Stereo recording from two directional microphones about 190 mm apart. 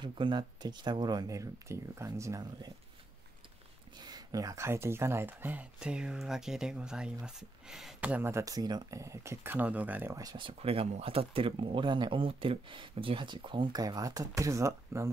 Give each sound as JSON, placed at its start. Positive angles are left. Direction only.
{"t": 0.0, "sound": "speech", "side_deg": -25}
{"t": 4.0, "sound": "speech", "side_deg": -20}